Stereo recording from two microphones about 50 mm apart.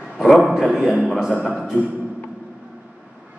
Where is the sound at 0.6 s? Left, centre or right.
Centre.